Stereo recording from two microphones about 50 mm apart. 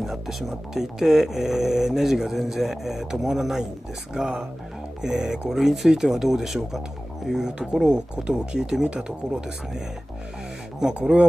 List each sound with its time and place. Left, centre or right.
0.0 s speech: centre
11.0 s speech: right